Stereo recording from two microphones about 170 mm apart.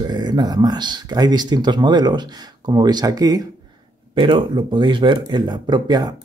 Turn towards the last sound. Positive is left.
turn(degrees=-25)  # may be behind; listen again after turning